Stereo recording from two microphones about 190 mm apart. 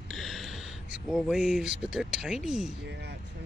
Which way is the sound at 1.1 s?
Centre (ahead or behind).